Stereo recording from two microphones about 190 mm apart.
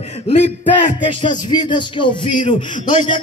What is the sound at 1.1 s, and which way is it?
Speech, 25° left (ahead or behind).